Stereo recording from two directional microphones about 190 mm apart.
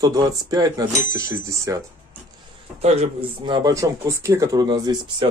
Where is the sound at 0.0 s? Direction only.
20° right (ahead or behind).